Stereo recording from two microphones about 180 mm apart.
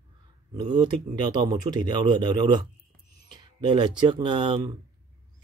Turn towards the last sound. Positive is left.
turn(degrees=-25)  # may be behind; listen again after turning